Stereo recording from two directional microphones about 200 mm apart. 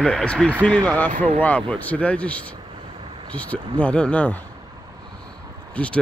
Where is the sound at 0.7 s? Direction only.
20° right (ahead or behind).